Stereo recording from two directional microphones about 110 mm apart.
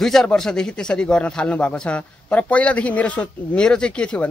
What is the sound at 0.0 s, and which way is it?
A man's voice, 5° left (ahead or behind).